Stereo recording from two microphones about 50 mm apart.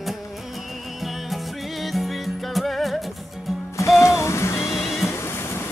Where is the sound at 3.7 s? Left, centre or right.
Left.